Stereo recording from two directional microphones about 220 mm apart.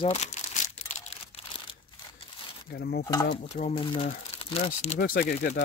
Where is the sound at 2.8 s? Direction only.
45° left (ahead or behind).